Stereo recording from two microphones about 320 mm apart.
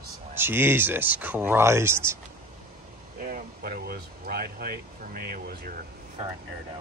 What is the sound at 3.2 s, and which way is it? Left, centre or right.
Speech, right.